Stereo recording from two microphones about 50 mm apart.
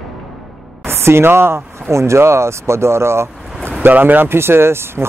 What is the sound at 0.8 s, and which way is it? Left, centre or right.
Speech, right.